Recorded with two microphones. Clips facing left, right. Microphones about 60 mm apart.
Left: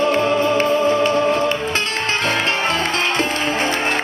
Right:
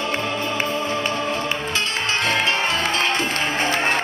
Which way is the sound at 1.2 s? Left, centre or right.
Left.